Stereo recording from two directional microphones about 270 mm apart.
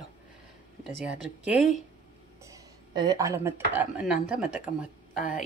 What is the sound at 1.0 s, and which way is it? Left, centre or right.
Speech, centre.